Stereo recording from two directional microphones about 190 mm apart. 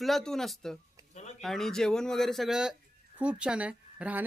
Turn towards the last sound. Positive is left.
turn(degrees=-5)  # may be behind; listen again after turning